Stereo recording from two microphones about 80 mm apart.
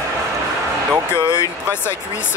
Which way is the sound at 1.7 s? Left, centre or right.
Left.